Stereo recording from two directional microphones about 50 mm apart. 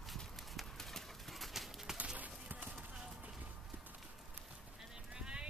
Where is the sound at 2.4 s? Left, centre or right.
Right.